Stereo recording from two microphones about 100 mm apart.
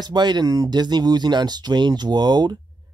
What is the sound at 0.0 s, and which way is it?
Speech, 45° right (ahead or behind).